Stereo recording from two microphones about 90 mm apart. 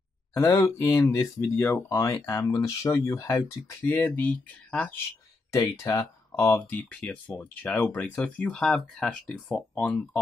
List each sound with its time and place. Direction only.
0.6 s speech: 35° left (ahead or behind)
4.1 s speech: 15° left (ahead or behind)
5.5 s speech: 35° left (ahead or behind)
6.7 s speech: 15° left (ahead or behind)